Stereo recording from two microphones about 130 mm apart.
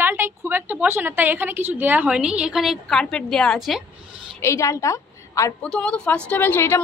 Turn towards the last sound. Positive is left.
turn(degrees=20)  # may be behind; listen again after turning